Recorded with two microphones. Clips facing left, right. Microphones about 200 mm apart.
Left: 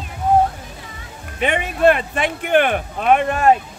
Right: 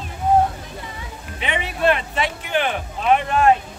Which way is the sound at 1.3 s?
50° left (ahead or behind).